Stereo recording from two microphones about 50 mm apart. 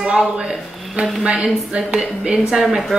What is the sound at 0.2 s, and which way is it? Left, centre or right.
Speech, centre.